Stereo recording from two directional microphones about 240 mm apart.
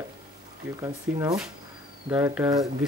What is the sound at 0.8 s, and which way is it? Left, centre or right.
Speech, centre.